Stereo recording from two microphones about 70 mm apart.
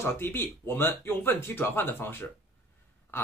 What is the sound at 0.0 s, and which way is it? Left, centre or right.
Speech, left.